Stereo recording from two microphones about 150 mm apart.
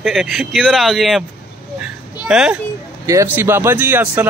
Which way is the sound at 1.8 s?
5° right (ahead or behind).